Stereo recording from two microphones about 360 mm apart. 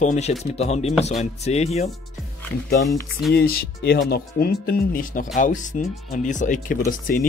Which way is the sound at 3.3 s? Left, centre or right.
Left.